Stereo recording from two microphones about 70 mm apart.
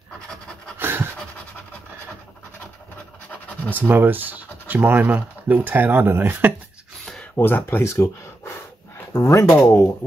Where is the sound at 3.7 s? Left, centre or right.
Right.